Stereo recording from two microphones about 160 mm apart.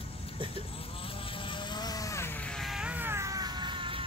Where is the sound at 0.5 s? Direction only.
35° left (ahead or behind).